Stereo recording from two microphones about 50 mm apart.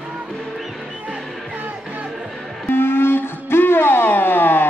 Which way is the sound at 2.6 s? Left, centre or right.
Left.